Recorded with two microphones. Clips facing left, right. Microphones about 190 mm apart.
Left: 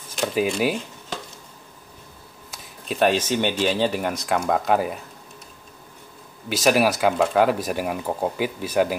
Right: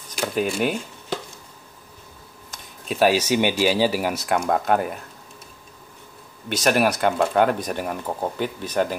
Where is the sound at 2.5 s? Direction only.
Centre (ahead or behind).